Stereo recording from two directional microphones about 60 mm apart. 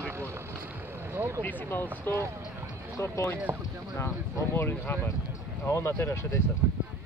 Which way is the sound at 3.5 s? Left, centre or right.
Right.